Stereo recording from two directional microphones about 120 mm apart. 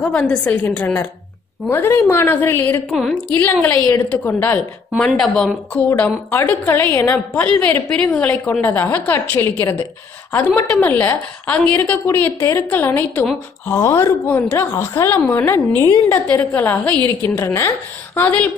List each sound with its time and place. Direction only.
0.0 s a woman's voice: 5° left (ahead or behind)
2.9 s a woman's voice: centre (ahead or behind)
3.3 s a woman's voice: 15° left (ahead or behind)
6.7 s a woman's voice: 20° left (ahead or behind)
15.8 s a woman's voice: 30° left (ahead or behind)
16.3 s a woman's voice: 20° left (ahead or behind)